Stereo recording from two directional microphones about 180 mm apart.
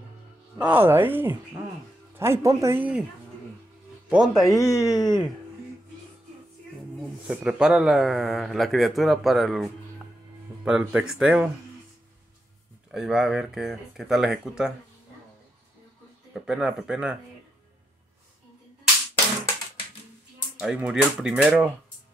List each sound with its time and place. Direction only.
0.6 s speech: 10° right (ahead or behind)
4.1 s speech: 5° right (ahead or behind)
4.6 s speech: 15° left (ahead or behind)
7.2 s speech: 5° right (ahead or behind)
12.9 s speech: 5° right (ahead or behind)
16.3 s speech: 5° right (ahead or behind)
20.5 s speech: 5° right (ahead or behind)